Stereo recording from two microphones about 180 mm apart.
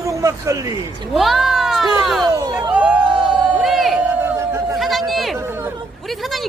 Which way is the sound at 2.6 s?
5° right (ahead or behind).